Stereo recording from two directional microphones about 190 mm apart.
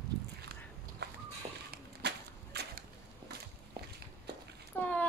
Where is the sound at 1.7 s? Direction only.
60° right (ahead or behind).